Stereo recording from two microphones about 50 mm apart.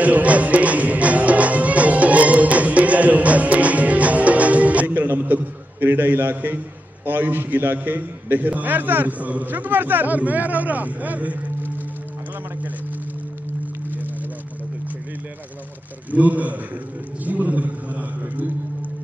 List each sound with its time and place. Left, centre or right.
0.0 s music: right
7.1 s a man's voice: right
16.1 s a man's voice: right
17.2 s a sound: right